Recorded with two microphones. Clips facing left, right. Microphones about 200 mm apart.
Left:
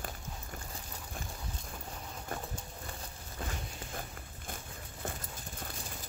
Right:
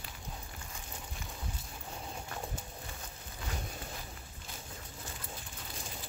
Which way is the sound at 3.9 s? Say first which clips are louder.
Left 4 dB; 50° left (ahead or behind).